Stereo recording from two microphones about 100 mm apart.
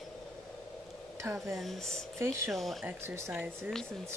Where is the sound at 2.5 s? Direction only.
Centre (ahead or behind).